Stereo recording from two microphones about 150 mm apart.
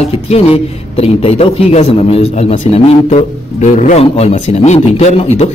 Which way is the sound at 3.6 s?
45° left (ahead or behind).